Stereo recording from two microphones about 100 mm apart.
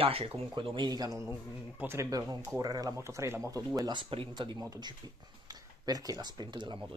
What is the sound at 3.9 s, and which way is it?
Speech, 60° right (ahead or behind).